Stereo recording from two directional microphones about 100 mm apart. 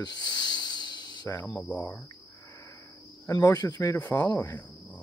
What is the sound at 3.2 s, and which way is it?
Speech, 30° left (ahead or behind).